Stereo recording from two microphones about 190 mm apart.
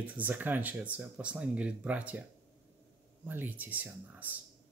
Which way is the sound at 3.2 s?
10° right (ahead or behind).